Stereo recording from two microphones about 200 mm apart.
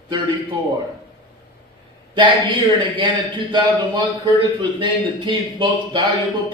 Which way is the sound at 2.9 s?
25° right (ahead or behind).